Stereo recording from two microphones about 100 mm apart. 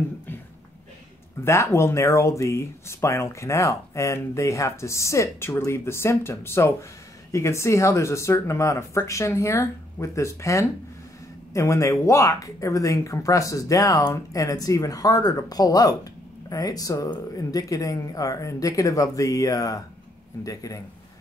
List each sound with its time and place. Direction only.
1.4 s speech: 30° left (ahead or behind)